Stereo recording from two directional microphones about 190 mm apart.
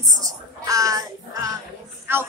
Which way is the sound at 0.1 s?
20° right (ahead or behind).